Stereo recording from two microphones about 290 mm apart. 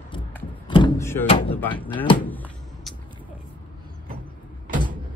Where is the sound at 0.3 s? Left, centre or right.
Centre.